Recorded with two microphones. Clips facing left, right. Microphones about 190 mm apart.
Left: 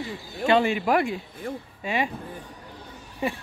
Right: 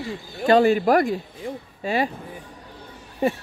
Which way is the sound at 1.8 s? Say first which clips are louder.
Right 4 dB; 35° right (ahead or behind).